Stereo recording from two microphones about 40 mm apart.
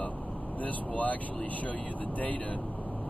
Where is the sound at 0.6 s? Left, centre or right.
Left.